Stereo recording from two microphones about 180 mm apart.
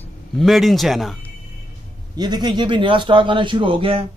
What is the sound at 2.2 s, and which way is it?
Speech, 25° right (ahead or behind).